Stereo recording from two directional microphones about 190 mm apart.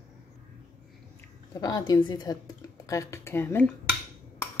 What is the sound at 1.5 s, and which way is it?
Speech, 20° left (ahead or behind).